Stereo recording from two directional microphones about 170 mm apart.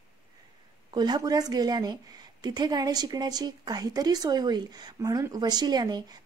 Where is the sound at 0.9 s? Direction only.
25° right (ahead or behind).